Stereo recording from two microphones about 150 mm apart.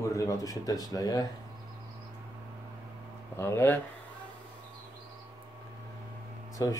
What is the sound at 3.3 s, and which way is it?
Speech, 15° left (ahead or behind).